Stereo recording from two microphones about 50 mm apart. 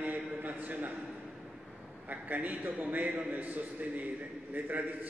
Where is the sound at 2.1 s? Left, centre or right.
Right.